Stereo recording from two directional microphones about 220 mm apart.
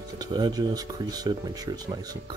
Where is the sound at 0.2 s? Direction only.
20° right (ahead or behind).